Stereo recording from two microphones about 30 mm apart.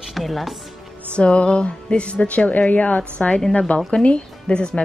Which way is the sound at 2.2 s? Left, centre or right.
Left.